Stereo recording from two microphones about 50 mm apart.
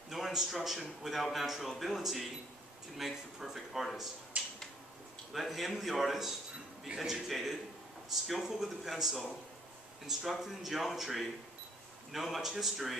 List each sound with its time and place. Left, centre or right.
0.1 s a man's voice: centre
4.3 s finger snapping: right
5.3 s a man's voice: centre
10.3 s a man's voice: centre